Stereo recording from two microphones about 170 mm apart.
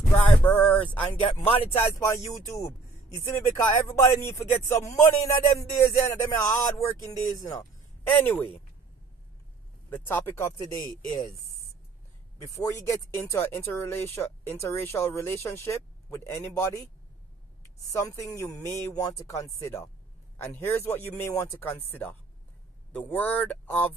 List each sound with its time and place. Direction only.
0.1 s speech: 10° left (ahead or behind)
1.5 s speech: 35° left (ahead or behind)
1.8 s speech: 15° left (ahead or behind)
8.1 s speech: 10° left (ahead or behind)
9.8 s speech: 10° left (ahead or behind)
12.4 s speech: 20° left (ahead or behind)
17.9 s speech: 20° left (ahead or behind)